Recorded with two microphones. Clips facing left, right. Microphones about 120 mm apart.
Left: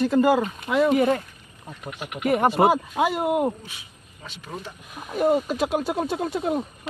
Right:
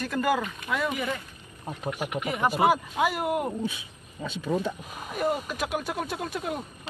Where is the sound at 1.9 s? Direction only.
35° right (ahead or behind).